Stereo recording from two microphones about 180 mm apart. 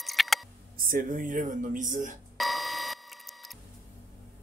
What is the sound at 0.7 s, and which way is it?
Speech, 50° right (ahead or behind).